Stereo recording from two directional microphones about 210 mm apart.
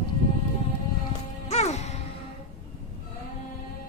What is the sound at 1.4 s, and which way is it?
Music, 30° left (ahead or behind).